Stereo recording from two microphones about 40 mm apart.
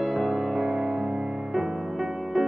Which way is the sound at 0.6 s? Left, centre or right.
Right.